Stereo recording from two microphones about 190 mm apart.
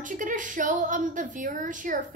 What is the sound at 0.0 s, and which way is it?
Speech, 45° right (ahead or behind).